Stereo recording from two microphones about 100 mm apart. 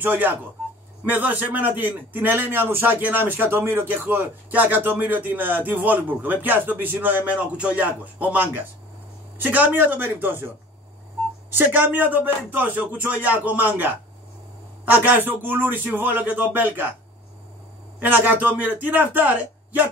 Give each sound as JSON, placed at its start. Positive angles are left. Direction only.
{"t": 0.0, "sound": "a man's voice", "side_deg": -20}
{"t": 11.5, "sound": "a man's voice", "side_deg": -20}
{"t": 17.9, "sound": "speech", "side_deg": -20}